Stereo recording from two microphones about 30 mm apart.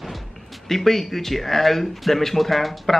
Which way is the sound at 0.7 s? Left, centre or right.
Centre.